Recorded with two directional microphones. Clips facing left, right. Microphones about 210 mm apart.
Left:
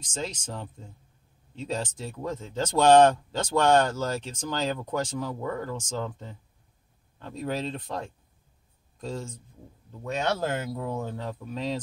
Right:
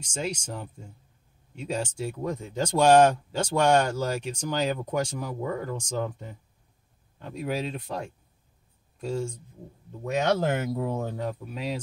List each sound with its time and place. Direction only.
0.0 s speech: 10° right (ahead or behind)
11.4 s speech: 10° right (ahead or behind)